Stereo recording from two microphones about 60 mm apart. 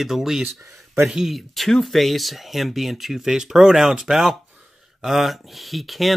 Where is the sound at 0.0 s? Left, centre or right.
Centre.